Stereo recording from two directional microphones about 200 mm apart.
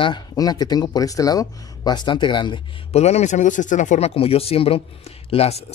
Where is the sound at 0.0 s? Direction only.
20° left (ahead or behind).